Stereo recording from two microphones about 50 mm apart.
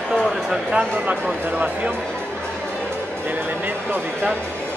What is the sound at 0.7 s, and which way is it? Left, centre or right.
Speech, right.